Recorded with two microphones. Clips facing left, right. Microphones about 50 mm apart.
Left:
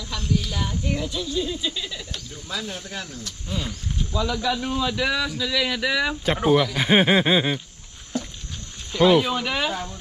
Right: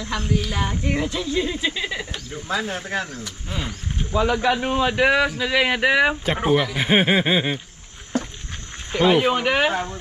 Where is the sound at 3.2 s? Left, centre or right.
Right.